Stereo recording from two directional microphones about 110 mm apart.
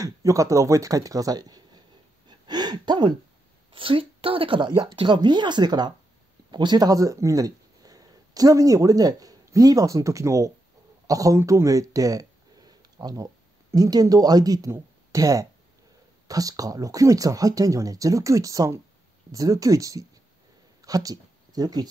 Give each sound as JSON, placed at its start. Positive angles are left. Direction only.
{"t": 0.0, "sound": "speech", "side_deg": -30}
{"t": 2.2, "sound": "gasp", "side_deg": -40}
{"t": 3.7, "sound": "speech", "side_deg": -50}